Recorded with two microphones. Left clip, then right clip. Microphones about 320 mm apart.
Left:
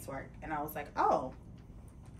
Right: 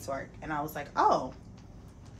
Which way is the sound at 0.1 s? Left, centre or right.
Centre.